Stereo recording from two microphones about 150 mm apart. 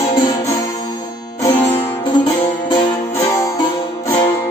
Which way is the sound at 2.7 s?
20° left (ahead or behind).